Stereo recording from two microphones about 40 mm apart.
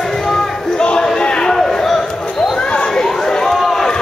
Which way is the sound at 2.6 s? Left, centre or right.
Left.